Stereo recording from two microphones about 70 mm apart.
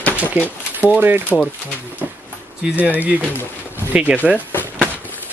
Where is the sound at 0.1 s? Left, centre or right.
Right.